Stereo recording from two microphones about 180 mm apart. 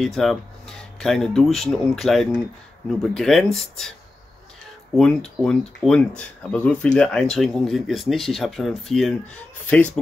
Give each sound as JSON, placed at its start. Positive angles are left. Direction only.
{"t": 0.0, "sound": "speech", "side_deg": 0}
{"t": 5.4, "sound": "speech", "side_deg": 5}